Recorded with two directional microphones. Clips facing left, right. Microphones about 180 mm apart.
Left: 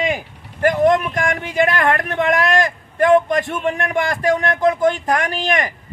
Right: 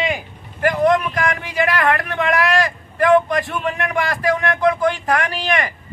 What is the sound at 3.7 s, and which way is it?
Speech, 45° left (ahead or behind).